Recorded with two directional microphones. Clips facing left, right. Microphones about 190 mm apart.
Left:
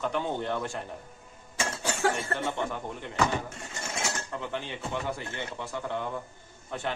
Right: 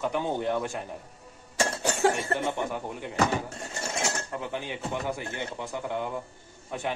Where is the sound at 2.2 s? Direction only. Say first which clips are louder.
Right 2 dB; 15° right (ahead or behind).